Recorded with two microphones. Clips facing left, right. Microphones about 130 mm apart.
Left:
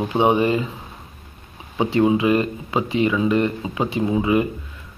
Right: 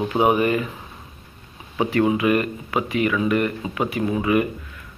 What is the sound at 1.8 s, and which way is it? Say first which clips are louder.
Speech: left 2 dB; 25° left (ahead or behind).